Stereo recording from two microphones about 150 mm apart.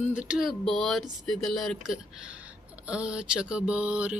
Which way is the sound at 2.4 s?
10° right (ahead or behind).